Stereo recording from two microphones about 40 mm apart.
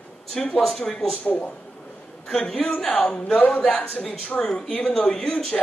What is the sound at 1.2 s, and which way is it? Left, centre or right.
Speech, left.